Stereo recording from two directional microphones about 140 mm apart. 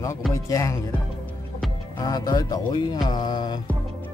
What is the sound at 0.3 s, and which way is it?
Speech, 25° left (ahead or behind).